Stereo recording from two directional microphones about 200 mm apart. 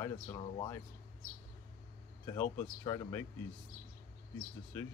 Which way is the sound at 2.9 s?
15° left (ahead or behind).